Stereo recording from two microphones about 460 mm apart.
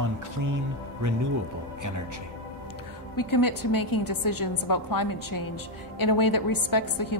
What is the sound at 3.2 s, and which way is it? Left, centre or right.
A woman's voice, left.